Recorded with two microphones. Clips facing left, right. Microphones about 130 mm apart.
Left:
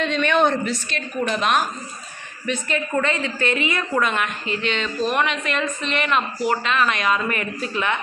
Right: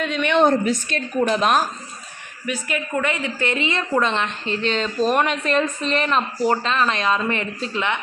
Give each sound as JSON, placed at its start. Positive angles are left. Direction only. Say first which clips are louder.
{"t": 0.0, "sound": "a woman's voice", "louder": "left 1 dB", "side_deg": -10}
{"t": 0.7, "sound": "a woman's voice", "louder": "right 4 dB", "side_deg": -45}
{"t": 1.3, "sound": "a woman's voice", "louder": "right 1 dB", "side_deg": -35}
{"t": 2.4, "sound": "a woman's voice", "louder": "left 1 dB", "side_deg": -10}